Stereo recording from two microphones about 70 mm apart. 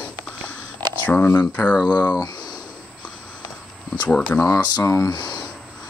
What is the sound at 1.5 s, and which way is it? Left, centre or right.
Speech, centre.